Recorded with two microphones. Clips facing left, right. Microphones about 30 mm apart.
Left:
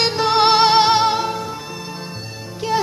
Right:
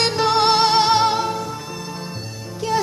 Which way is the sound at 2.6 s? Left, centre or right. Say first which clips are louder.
Left 1 dB; centre.